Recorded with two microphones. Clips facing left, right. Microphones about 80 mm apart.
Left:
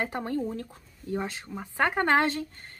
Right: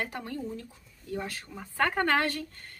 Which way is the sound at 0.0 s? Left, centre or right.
Left.